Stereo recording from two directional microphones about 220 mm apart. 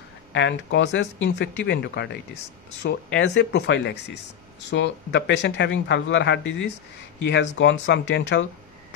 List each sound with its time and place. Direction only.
0.3 s speech: 50° left (ahead or behind)